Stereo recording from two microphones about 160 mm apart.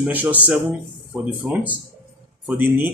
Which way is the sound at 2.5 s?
10° right (ahead or behind).